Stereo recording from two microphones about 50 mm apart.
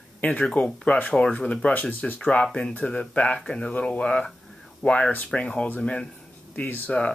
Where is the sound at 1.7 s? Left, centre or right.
Left.